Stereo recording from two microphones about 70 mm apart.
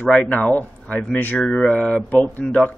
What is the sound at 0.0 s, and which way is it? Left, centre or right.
Speech, centre.